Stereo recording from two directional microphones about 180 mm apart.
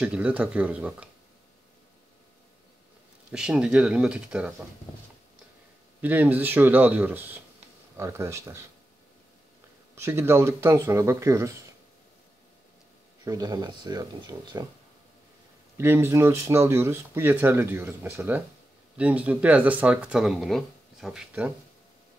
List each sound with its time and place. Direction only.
0.0 s speech: 5° right (ahead or behind)
3.3 s speech: 5° right (ahead or behind)
5.9 s speech: 10° right (ahead or behind)
9.9 s speech: 15° right (ahead or behind)
13.2 s speech: 20° right (ahead or behind)
15.8 s speech: 15° right (ahead or behind)